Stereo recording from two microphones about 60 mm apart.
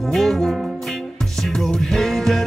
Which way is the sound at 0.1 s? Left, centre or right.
Centre.